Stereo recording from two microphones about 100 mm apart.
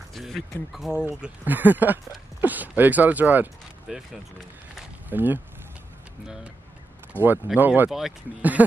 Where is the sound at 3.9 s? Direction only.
5° right (ahead or behind).